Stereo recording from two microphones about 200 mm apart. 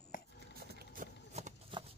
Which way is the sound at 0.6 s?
50° right (ahead or behind).